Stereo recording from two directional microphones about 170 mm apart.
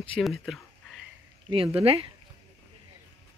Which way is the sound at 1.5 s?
35° right (ahead or behind).